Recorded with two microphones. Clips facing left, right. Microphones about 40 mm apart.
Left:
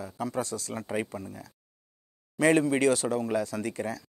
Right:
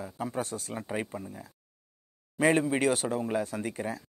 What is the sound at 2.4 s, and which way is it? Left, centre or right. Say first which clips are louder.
Speech: left 2 dB; centre.